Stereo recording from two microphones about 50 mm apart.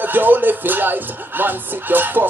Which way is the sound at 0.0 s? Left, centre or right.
Right.